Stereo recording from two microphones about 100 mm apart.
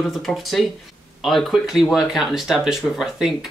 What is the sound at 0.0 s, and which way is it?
Speech, centre (ahead or behind).